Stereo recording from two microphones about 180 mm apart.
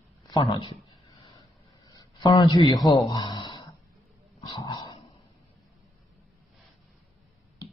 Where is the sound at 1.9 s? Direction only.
20° left (ahead or behind).